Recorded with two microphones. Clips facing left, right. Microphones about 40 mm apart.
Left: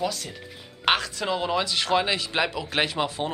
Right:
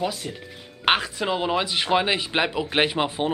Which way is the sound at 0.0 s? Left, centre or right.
Centre.